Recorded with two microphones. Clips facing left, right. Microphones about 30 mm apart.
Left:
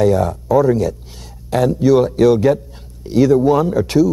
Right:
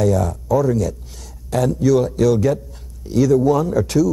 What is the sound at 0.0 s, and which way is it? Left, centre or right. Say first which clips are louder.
Speech: left 4 dB; left.